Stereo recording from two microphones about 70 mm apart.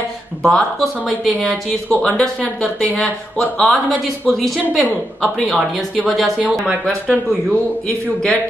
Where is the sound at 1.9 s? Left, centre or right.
Centre.